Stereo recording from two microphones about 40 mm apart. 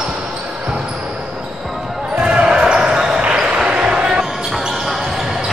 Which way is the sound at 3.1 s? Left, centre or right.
Right.